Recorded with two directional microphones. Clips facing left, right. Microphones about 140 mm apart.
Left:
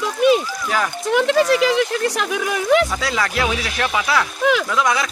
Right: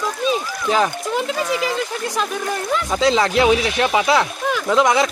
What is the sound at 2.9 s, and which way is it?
Speech, 25° right (ahead or behind).